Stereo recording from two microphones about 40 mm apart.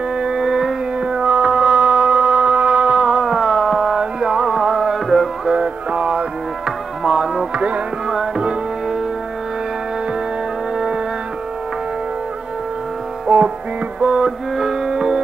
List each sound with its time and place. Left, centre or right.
0.2 s a sound: centre
1.0 s music: right; by 5.5 s centre
5.5 s music: right
7.0 s music: centre
7.5 s music: right
8.1 s tabla: right
13.3 s music: centre
13.9 s music: right
14.6 s music: centre